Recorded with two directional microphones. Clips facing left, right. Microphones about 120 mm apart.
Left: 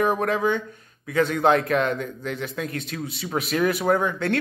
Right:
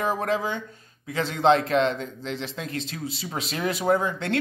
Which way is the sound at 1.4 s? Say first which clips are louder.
Right 3 dB; 25° right (ahead or behind).